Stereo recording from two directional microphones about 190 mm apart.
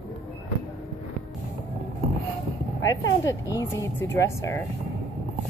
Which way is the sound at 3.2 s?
15° left (ahead or behind).